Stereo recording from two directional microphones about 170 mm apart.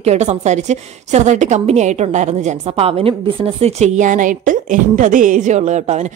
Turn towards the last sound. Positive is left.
turn(degrees=-45)  # may be behind; listen again after turning